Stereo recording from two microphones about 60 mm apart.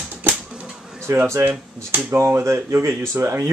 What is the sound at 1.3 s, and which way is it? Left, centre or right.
Speech, right.